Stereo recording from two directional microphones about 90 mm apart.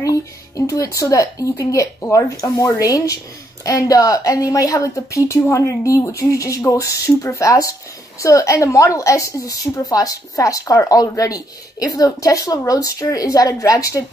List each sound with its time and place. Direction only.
0.0 s a woman's voice: 40° left (ahead or behind)